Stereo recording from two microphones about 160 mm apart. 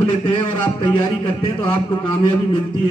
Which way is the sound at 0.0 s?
30° left (ahead or behind).